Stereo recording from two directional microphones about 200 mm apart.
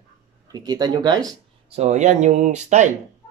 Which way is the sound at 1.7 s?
35° right (ahead or behind).